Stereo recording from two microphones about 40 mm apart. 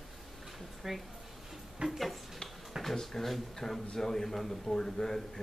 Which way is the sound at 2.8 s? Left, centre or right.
Centre.